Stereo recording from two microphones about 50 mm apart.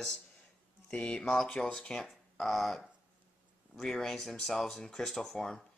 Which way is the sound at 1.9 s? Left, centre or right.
Centre.